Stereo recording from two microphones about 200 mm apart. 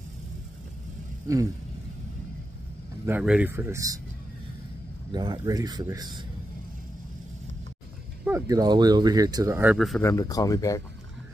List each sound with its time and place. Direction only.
1.2 s speech: 15° right (ahead or behind)
3.1 s speech: 5° right (ahead or behind)
5.1 s speech: 20° right (ahead or behind)
8.3 s speech: 15° right (ahead or behind)
10.0 s speech: 15° left (ahead or behind)